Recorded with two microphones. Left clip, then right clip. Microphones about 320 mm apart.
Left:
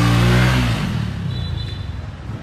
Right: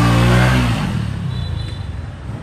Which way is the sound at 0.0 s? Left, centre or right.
Centre.